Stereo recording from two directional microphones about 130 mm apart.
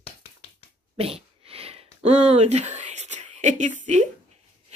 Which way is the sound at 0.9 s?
50° right (ahead or behind).